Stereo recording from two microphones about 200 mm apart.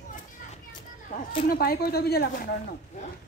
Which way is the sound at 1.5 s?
50° left (ahead or behind).